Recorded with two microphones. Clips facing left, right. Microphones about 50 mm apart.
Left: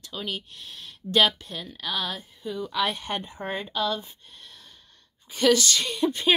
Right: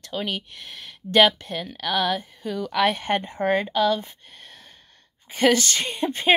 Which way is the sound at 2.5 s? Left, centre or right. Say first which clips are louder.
Right 5 dB; right.